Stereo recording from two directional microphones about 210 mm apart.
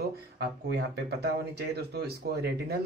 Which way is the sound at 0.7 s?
50° right (ahead or behind).